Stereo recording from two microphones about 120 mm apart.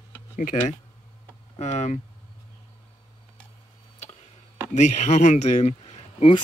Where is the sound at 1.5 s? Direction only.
70° left (ahead or behind).